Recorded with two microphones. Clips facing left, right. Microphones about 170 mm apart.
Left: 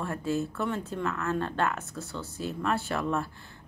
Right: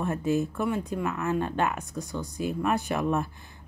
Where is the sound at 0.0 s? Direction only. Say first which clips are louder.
Right 4 dB; 20° right (ahead or behind).